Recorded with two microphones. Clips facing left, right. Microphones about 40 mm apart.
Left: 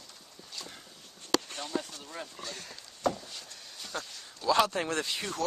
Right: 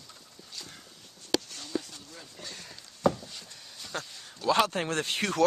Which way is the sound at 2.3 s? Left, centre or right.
Centre.